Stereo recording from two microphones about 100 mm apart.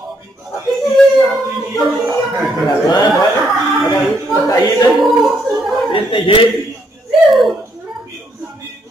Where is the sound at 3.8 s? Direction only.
35° left (ahead or behind).